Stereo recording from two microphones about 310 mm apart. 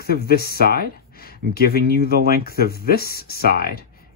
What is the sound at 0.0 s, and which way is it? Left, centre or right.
Speech, left.